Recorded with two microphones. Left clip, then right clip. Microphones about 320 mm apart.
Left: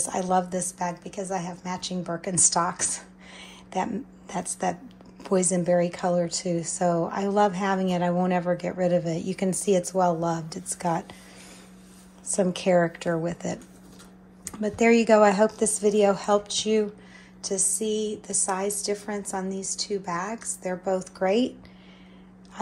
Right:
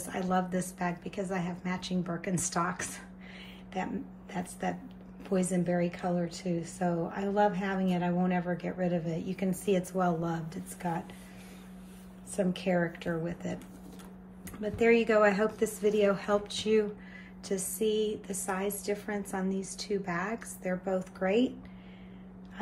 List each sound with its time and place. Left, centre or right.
0.0 s a woman's voice: centre
12.3 s a woman's voice: centre